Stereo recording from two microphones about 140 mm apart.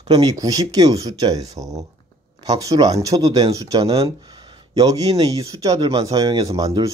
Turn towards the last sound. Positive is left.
turn(degrees=-30)  # may be behind; listen again after turning